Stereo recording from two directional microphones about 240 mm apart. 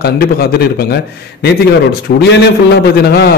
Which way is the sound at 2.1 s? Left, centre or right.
Left.